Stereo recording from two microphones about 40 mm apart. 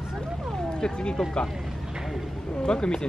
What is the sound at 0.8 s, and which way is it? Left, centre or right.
Speech, left.